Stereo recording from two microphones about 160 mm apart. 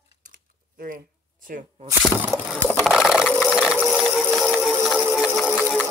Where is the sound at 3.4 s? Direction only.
5° right (ahead or behind).